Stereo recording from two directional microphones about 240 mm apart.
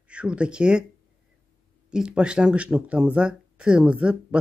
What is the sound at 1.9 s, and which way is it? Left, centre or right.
Speech, centre.